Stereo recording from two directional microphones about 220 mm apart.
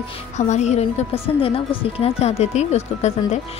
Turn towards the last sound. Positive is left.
turn(degrees=30)  # may be behind; listen again after turning